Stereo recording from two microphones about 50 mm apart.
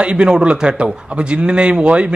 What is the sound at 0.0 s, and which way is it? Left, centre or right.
A man's voice, centre.